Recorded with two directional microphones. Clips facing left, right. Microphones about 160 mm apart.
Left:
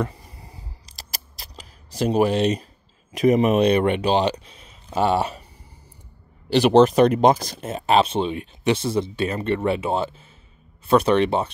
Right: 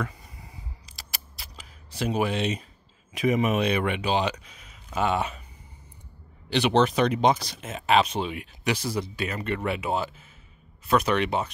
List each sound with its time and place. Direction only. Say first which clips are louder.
0.0 s a sound: left 6 dB; 30° left (ahead or behind)
3.1 s speech: left 6 dB; 35° left (ahead or behind)
6.5 s speech: left 7 dB; 40° left (ahead or behind)